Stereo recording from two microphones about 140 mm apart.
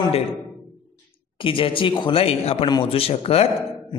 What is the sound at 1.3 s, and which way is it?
A man's voice, 40° left (ahead or behind).